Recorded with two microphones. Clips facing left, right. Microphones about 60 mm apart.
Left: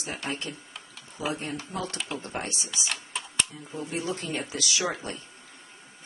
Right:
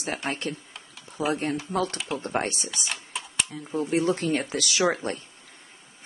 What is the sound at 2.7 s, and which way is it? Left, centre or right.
Typing, centre.